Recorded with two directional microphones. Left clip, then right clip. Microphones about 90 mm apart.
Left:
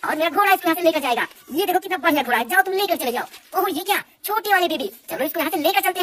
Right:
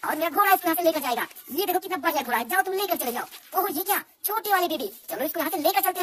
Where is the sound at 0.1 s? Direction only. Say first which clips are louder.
Left 4 dB; 20° right (ahead or behind).